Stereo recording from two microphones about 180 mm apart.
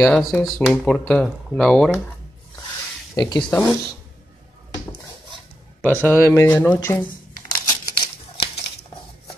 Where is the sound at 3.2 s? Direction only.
25° left (ahead or behind).